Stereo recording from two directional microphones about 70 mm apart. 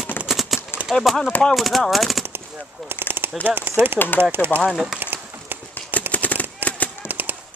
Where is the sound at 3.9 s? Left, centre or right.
Left.